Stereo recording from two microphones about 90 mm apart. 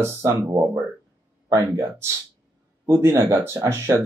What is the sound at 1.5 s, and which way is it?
Speech, 40° right (ahead or behind).